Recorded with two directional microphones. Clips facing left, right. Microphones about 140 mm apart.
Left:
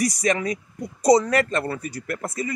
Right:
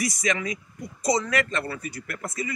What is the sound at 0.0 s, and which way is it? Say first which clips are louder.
A man's voice: left 5 dB; 35° left (ahead or behind).